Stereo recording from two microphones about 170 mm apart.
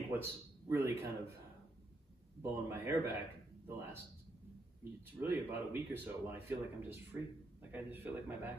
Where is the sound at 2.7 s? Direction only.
15° right (ahead or behind).